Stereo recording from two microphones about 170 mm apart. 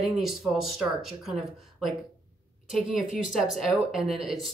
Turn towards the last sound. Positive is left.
turn(degrees=0)  # may be behind; listen again after turning